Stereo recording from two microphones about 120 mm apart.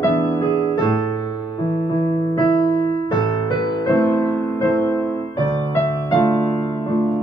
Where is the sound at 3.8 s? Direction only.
35° left (ahead or behind).